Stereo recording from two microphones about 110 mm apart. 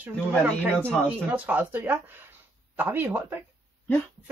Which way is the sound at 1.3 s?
15° right (ahead or behind).